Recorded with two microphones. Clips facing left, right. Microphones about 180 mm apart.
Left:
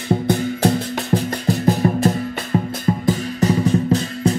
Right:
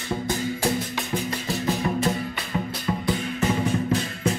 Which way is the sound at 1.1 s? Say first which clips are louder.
Left 8 dB; 40° left (ahead or behind).